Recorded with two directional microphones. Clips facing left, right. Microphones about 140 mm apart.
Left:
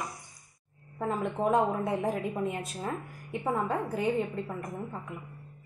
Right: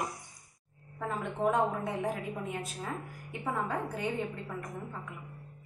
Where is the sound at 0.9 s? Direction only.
35° left (ahead or behind).